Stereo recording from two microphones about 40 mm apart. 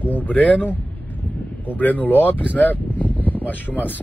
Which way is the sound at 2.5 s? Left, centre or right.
Left.